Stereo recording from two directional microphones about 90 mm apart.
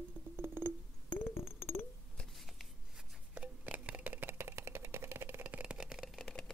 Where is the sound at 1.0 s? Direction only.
20° left (ahead or behind).